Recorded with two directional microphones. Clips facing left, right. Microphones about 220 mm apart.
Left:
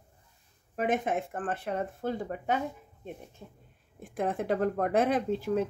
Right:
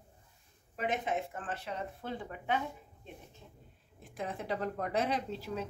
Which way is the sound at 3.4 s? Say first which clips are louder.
Left 6 dB; 55° left (ahead or behind).